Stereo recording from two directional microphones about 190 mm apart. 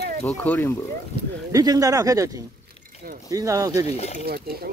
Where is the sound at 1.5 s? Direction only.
20° right (ahead or behind).